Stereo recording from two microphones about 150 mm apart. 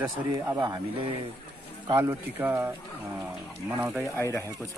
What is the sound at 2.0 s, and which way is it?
Speech, 15° right (ahead or behind).